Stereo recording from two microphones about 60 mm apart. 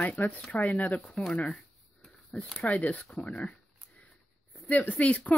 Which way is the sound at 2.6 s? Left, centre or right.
Left.